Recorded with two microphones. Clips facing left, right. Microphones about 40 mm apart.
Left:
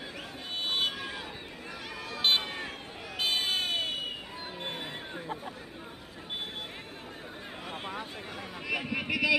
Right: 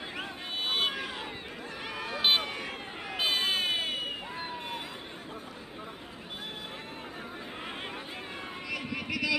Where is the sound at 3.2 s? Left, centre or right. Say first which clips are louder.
Right 1 dB; centre.